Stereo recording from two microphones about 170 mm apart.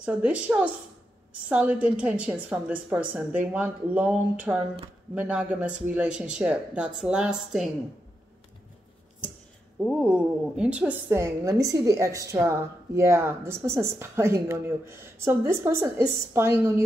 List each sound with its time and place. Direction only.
0.0 s a woman's voice: 5° right (ahead or behind)
9.8 s a woman's voice: centre (ahead or behind)